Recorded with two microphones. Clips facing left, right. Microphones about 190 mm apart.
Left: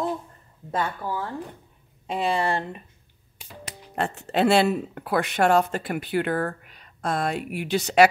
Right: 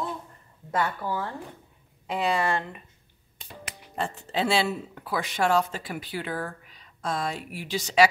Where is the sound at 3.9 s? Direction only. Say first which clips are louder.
Left 4 dB; 65° left (ahead or behind).